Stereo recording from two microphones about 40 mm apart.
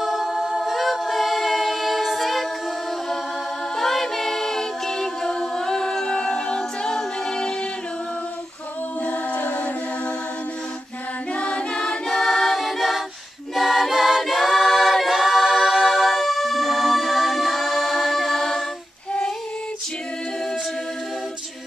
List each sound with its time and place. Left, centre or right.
0.0 s a capella: centre
3.7 s a capella: centre
9.0 s a capella: left
11.3 s choir: left
12.1 s choir: centre
12.6 s a capella: centre
13.6 s choir: centre